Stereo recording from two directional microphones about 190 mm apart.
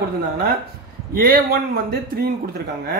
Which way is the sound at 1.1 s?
50° right (ahead or behind).